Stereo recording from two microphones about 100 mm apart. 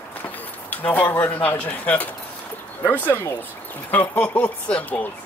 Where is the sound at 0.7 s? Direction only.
15° left (ahead or behind).